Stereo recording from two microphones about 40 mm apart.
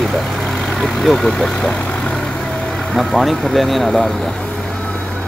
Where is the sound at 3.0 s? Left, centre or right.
Centre.